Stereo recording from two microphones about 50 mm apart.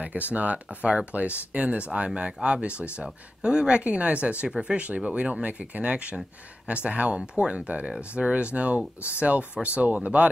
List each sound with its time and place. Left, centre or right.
0.0 s speech: right